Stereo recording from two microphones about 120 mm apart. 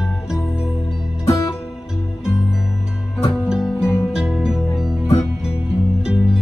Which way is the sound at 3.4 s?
5° right (ahead or behind).